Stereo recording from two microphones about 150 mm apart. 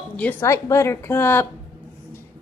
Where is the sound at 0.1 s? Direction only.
10° left (ahead or behind).